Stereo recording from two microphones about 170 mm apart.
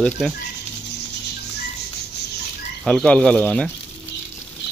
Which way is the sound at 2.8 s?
5° left (ahead or behind).